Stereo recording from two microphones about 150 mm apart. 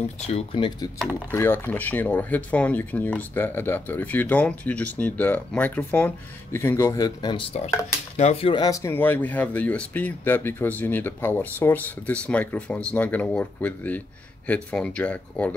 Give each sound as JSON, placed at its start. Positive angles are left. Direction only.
{"t": 0.3, "sound": "speech", "side_deg": 40}
{"t": 1.3, "sound": "speech", "side_deg": 15}
{"t": 8.2, "sound": "speech", "side_deg": 45}
{"t": 8.5, "sound": "speech", "side_deg": 25}